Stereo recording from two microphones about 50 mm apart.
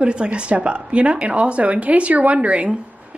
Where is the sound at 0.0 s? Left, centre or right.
Right.